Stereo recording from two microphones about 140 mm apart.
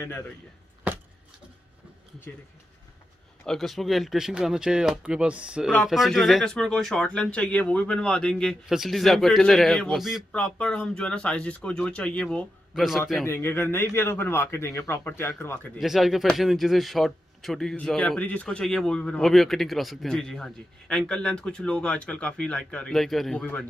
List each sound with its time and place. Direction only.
0.0 s speech: 15° left (ahead or behind)
3.4 s speech: centre (ahead or behind)
13.2 s speech: 15° left (ahead or behind)
15.8 s speech: centre (ahead or behind)